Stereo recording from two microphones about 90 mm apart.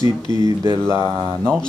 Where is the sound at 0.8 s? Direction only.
30° right (ahead or behind).